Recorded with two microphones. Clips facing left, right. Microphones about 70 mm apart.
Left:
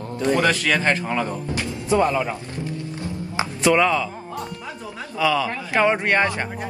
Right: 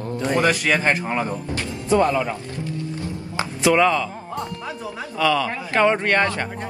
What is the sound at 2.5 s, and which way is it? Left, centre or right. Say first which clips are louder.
Music: right 1 dB; left.